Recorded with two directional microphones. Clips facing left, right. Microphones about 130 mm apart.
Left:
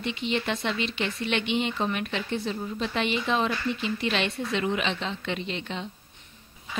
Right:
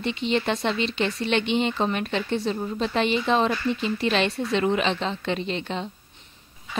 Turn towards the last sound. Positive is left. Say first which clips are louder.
# right 4 dB
turn(degrees=-35)  # may be behind; listen again after turning